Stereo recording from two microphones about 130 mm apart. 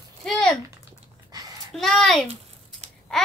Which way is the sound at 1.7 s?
5° left (ahead or behind).